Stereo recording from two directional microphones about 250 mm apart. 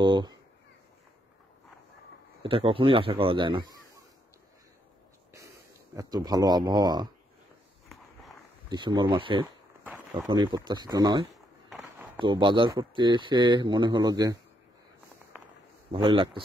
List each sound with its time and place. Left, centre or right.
0.0 s speech: centre
2.4 s a man's voice: right
5.9 s speech: centre
8.6 s a man's voice: centre
15.9 s a man's voice: centre